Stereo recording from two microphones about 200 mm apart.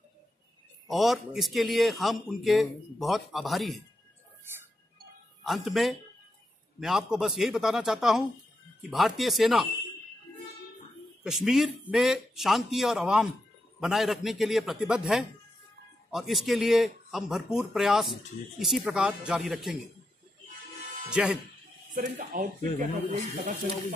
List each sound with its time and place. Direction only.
0.8 s speech: centre (ahead or behind)
5.4 s speech: centre (ahead or behind)
11.2 s speech: centre (ahead or behind)
21.1 s speech: 5° right (ahead or behind)
21.9 s speech: 45° right (ahead or behind)